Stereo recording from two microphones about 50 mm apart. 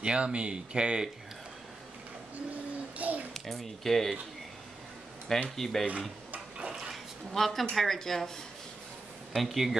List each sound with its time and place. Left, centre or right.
0.0 s speech: centre
3.0 s a sound: right
3.3 s speech: centre
5.6 s speech: centre
6.6 s a sound: centre
7.3 s speech: centre
9.3 s speech: centre